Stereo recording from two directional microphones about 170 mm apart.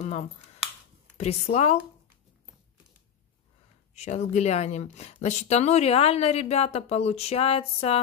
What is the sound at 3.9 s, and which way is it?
Speech, 40° left (ahead or behind).